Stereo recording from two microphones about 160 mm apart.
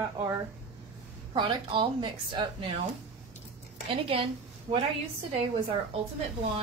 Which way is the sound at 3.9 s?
35° right (ahead or behind).